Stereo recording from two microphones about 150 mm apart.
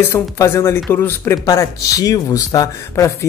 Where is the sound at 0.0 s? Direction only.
15° left (ahead or behind).